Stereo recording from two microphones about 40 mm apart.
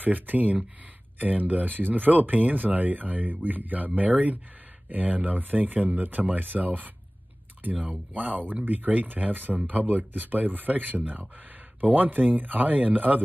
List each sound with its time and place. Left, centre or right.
0.0 s speech: right